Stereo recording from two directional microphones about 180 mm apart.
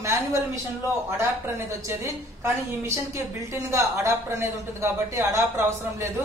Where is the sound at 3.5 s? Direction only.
15° right (ahead or behind).